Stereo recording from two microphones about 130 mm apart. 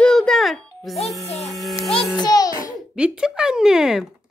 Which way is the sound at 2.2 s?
30° left (ahead or behind).